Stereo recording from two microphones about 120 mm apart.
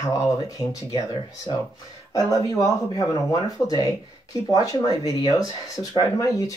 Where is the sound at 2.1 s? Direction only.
25° left (ahead or behind).